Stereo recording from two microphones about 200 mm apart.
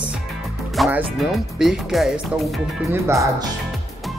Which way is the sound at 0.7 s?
Centre (ahead or behind).